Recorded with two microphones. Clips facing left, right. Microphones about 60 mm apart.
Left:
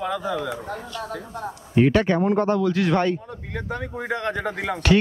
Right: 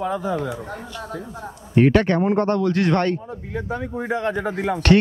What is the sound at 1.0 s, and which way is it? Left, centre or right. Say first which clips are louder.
Speech: left 1 dB; left.